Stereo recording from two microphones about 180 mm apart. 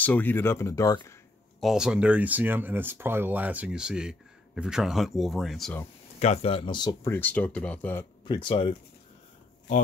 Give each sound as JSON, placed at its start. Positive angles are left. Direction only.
{"t": 0.0, "sound": "speech", "side_deg": 10}
{"t": 1.6, "sound": "speech", "side_deg": -5}
{"t": 6.1, "sound": "speech", "side_deg": 35}
{"t": 8.3, "sound": "speech", "side_deg": 25}